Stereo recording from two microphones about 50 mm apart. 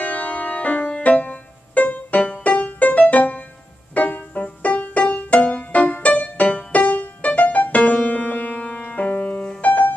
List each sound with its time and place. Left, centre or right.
0.0 s music: left